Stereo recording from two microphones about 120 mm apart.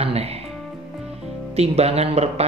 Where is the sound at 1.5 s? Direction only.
60° right (ahead or behind).